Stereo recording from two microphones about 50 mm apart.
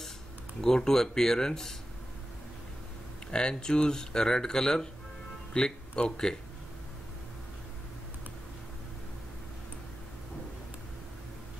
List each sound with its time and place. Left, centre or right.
0.6 s speech: centre
3.3 s speech: centre